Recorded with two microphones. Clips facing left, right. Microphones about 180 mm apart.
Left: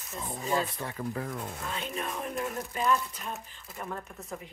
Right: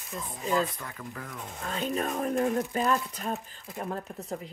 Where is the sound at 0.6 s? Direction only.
30° left (ahead or behind).